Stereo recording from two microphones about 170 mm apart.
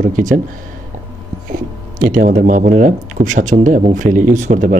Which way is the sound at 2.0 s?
55° right (ahead or behind).